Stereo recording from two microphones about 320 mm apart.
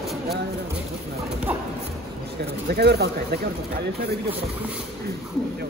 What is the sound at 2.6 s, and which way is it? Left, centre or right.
Speech, right.